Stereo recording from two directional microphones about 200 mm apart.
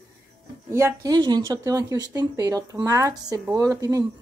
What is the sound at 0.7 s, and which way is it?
A woman's voice, 15° right (ahead or behind).